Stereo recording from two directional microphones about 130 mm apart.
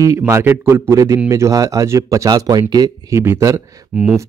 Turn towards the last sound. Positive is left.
turn(degrees=-10)  # may be behind; listen again after turning